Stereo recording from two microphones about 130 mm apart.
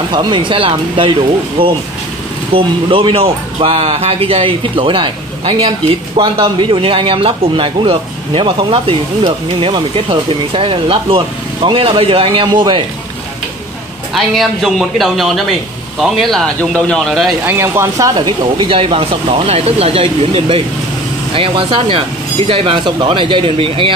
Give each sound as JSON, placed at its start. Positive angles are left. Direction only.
{"t": 0.1, "sound": "speech", "side_deg": -35}
{"t": 14.1, "sound": "speech", "side_deg": 0}
{"t": 17.5, "sound": "speech", "side_deg": -20}